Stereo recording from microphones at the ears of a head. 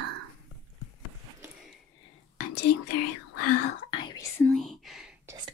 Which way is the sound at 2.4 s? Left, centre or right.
Left.